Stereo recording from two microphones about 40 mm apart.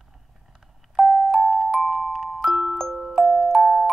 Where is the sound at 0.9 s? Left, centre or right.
Centre.